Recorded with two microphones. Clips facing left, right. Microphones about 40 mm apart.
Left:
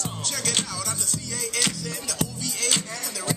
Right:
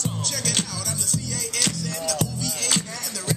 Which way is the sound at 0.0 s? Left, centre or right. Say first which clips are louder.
Right 2 dB; centre.